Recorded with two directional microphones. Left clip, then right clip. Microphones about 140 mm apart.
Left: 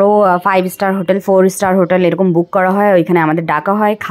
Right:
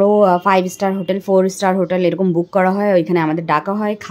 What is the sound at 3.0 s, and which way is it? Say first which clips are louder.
Speech: left 5 dB; 15° left (ahead or behind).